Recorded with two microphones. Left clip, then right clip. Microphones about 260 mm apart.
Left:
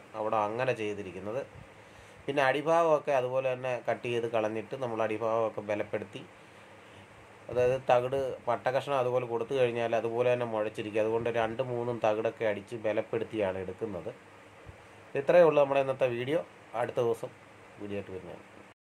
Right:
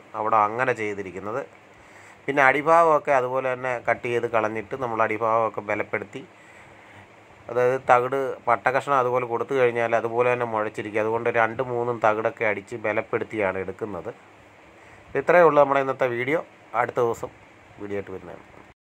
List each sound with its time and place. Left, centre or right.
0.1 s speech: centre
7.5 s speech: centre
15.1 s speech: centre